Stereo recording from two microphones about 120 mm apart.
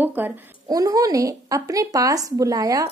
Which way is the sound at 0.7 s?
30° right (ahead or behind).